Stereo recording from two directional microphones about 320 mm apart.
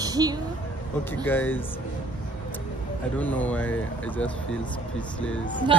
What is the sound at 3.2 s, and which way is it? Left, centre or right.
Speech, centre.